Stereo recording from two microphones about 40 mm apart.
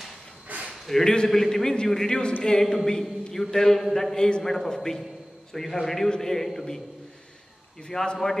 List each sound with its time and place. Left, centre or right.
0.5 s a sound: right
0.8 s a man's voice: centre
7.9 s a man's voice: centre